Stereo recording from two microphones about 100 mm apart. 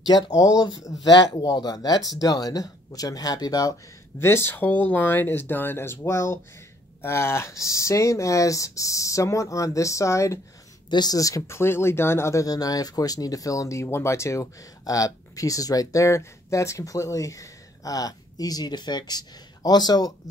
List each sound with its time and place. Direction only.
0.0 s speech: 40° left (ahead or behind)
4.2 s speech: 25° left (ahead or behind)
10.9 s speech: 45° left (ahead or behind)